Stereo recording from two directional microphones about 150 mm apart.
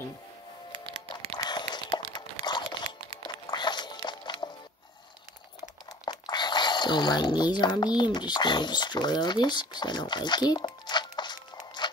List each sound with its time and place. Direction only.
0.7 s music: 35° right (ahead or behind)
1.4 s a sound: 30° left (ahead or behind)
2.4 s crunch: 30° left (ahead or behind)
3.4 s music: 30° left (ahead or behind)
6.0 s a sound: 30° left (ahead or behind)
8.0 s speech: 30° left (ahead or behind)